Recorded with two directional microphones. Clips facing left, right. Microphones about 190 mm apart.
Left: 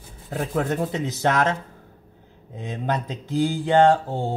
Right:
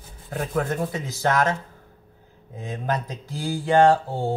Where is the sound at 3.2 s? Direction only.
20° left (ahead or behind).